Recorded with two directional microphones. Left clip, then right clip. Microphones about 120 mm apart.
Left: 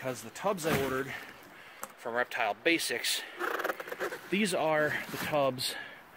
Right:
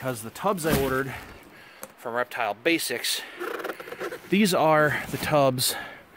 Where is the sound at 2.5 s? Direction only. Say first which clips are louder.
Right 4 dB; 90° right.